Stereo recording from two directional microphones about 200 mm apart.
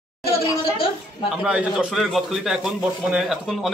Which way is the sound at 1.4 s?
5° right (ahead or behind).